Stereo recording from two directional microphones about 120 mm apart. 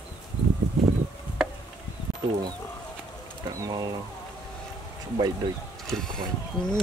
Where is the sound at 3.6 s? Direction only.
35° right (ahead or behind).